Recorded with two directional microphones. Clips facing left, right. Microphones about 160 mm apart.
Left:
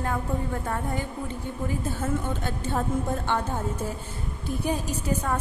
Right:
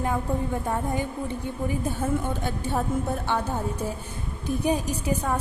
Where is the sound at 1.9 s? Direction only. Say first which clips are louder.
Right 2 dB; 15° right (ahead or behind).